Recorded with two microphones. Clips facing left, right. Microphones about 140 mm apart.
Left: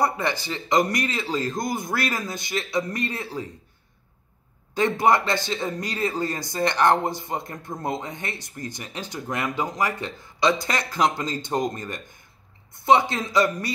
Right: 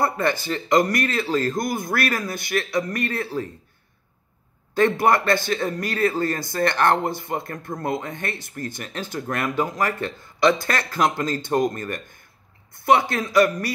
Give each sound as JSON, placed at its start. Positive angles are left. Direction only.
{"t": 0.0, "sound": "a man's voice", "side_deg": 20}
{"t": 4.7, "sound": "a man's voice", "side_deg": 20}